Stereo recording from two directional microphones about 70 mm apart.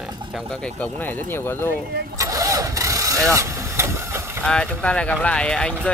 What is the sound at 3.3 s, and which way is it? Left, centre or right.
Vehicle, right.